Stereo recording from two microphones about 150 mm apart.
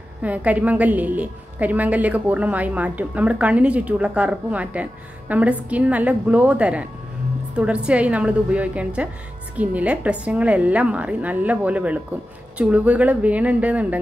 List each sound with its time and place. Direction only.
0.2 s a woman's voice: 10° right (ahead or behind)